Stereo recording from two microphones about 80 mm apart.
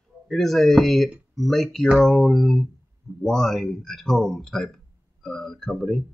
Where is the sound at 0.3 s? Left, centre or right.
Centre.